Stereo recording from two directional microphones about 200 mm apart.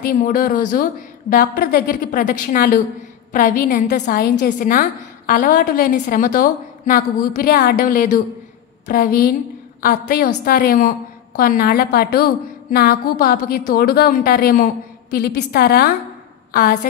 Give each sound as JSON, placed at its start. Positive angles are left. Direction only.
{"t": 0.0, "sound": "a woman's voice", "side_deg": 45}